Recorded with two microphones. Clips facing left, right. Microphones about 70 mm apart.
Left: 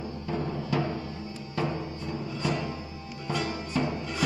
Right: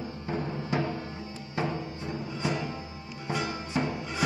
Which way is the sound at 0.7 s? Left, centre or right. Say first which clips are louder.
Left 1 dB; right.